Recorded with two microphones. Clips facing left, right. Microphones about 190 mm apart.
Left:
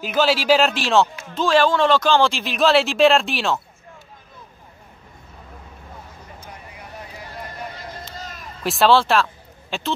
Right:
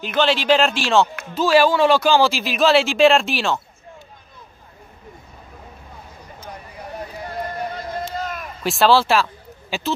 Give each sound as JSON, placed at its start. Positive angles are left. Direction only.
{"t": 0.0, "sound": "speech", "side_deg": 5}
{"t": 8.2, "sound": "run", "side_deg": -60}
{"t": 8.6, "sound": "speech", "side_deg": 0}